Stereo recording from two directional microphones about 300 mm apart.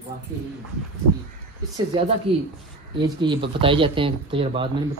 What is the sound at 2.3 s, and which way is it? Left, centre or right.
Speech, centre.